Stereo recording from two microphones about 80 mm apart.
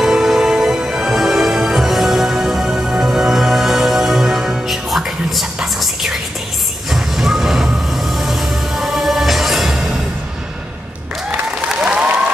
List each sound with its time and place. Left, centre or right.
0.0 s music: centre
6.9 s vehicle: centre
11.2 s applause: centre